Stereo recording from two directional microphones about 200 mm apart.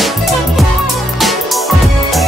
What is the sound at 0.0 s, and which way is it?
Music, centre (ahead or behind).